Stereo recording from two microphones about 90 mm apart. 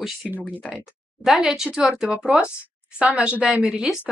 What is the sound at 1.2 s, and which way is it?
Speech, 5° right (ahead or behind).